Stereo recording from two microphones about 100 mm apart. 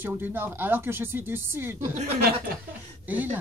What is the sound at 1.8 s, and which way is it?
Speech, 90° right.